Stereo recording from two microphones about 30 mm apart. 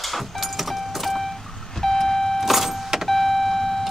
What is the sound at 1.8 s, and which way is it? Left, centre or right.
Vehicle, centre.